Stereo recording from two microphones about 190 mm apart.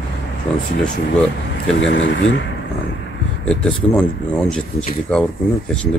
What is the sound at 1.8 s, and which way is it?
Speech, 75° left (ahead or behind).